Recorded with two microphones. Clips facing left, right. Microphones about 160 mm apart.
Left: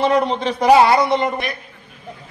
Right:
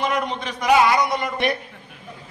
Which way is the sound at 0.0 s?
30° left (ahead or behind).